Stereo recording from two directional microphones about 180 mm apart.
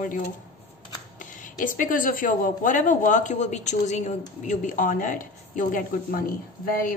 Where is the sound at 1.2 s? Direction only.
45° left (ahead or behind).